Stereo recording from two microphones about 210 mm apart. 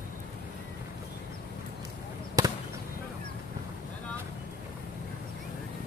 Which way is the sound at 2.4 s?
15° right (ahead or behind).